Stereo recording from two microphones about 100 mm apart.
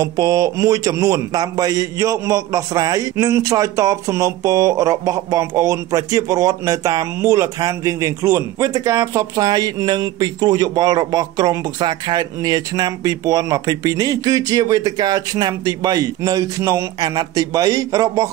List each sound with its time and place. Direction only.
0.0 s a man's voice: 40° right (ahead or behind)